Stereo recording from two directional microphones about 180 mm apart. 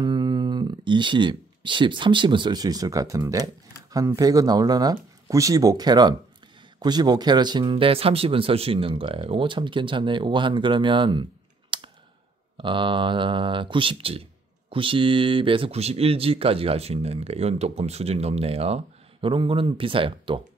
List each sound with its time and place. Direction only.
0.0 s speech: 25° right (ahead or behind)
11.7 s clicking: 25° right (ahead or behind)
12.5 s speech: 25° right (ahead or behind)